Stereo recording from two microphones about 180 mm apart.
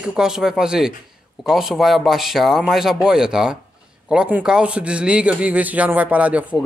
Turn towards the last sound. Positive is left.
turn(degrees=-5)  # may be behind; listen again after turning